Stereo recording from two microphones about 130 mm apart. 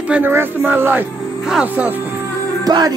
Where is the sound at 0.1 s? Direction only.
15° right (ahead or behind).